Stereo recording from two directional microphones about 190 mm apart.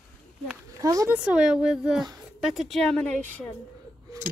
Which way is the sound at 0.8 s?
15° right (ahead or behind).